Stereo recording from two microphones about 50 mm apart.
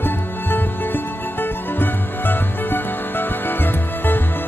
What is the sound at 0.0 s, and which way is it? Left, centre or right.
Music, left.